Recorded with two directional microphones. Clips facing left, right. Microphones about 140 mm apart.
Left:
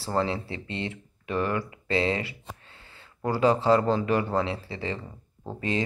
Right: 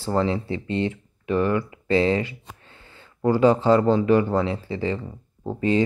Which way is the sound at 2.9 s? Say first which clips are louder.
Right 7 dB; 30° right (ahead or behind).